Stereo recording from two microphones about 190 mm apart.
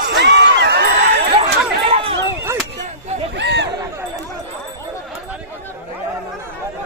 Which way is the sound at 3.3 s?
65° right (ahead or behind).